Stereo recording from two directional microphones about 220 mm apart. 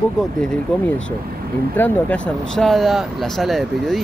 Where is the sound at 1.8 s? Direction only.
5° left (ahead or behind).